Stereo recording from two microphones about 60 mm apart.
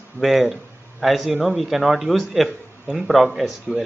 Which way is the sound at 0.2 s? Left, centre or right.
Centre.